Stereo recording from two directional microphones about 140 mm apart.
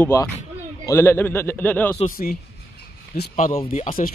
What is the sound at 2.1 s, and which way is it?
Speech, 90° left.